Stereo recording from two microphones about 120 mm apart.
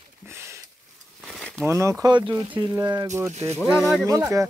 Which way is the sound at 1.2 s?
5° left (ahead or behind).